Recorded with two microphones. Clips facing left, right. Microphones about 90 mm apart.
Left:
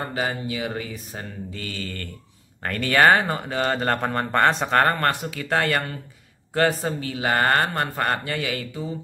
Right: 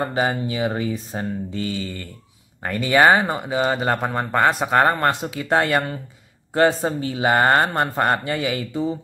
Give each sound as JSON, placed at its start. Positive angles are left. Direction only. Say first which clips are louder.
{"t": 0.0, "sound": "mantra", "louder": "right 5 dB", "side_deg": -25}
{"t": 2.6, "sound": "speech", "louder": "right 2 dB", "side_deg": -15}
{"t": 6.5, "sound": "mantra", "louder": "right 4 dB", "side_deg": -20}